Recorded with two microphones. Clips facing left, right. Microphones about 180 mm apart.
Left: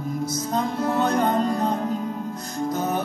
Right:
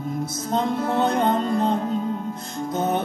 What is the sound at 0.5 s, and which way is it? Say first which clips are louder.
Music: right 2 dB; 25° right (ahead or behind).